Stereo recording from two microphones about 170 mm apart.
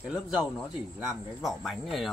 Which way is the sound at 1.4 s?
Centre (ahead or behind).